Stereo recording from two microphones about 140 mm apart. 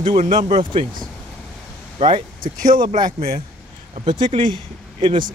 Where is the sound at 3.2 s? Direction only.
90° right.